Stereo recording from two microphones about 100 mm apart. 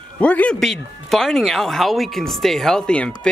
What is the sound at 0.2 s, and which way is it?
Speech, 10° left (ahead or behind).